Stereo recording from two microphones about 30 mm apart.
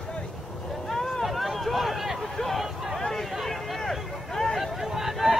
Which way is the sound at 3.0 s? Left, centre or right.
Centre.